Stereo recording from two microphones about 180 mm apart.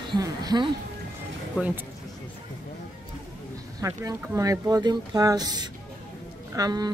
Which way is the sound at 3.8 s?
15° right (ahead or behind).